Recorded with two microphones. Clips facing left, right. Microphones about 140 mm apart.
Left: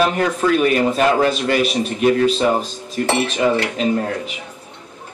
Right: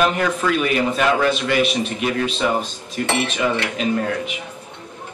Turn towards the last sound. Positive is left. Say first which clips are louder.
# left 1 dB
turn(degrees=35)  # may be behind; listen again after turning